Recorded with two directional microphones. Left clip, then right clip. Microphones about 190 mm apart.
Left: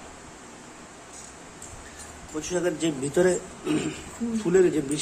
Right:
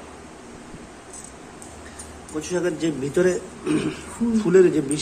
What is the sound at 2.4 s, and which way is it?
A man's voice, 10° left (ahead or behind).